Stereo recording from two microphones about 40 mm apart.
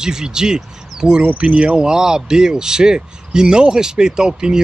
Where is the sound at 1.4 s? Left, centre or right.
Right.